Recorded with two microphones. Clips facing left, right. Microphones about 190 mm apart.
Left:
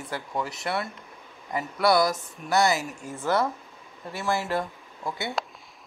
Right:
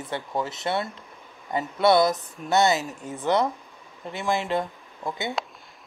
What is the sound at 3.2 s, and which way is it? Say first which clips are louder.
Speech: right 2 dB; 20° right (ahead or behind).